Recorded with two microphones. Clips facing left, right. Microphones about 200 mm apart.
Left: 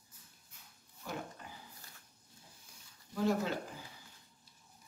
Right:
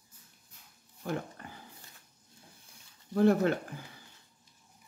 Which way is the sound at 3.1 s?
60° right (ahead or behind).